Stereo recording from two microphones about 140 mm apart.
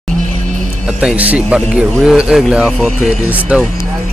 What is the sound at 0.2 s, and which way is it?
Music, 65° right (ahead or behind).